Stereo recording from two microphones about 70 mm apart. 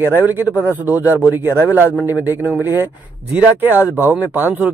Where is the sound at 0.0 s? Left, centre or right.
Right.